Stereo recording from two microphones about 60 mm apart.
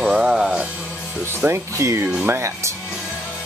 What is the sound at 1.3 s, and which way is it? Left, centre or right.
Speech, right.